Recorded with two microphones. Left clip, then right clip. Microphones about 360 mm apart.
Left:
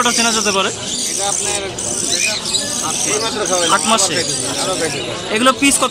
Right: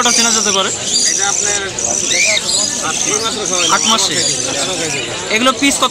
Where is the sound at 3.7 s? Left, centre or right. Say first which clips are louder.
Right 2 dB; centre.